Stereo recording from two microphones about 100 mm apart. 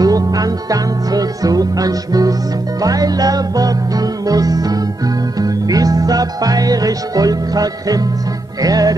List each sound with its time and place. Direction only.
0.0 s music: 40° right (ahead or behind)